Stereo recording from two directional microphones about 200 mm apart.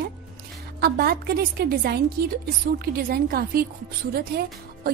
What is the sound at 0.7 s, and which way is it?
A woman's voice, 50° right (ahead or behind).